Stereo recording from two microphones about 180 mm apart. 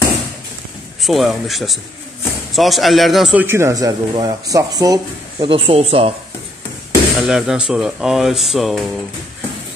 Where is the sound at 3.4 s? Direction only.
15° right (ahead or behind); by 6.1 s 35° right (ahead or behind).